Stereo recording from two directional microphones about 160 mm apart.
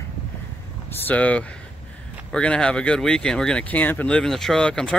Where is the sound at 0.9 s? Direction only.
10° left (ahead or behind).